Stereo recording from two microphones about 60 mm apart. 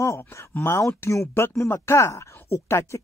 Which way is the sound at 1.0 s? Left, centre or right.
Left.